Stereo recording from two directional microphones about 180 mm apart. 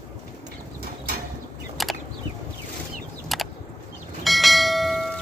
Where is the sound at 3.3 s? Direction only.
Centre (ahead or behind).